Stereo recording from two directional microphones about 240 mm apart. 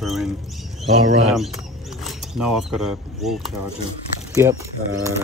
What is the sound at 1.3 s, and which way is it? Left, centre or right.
Speech, centre.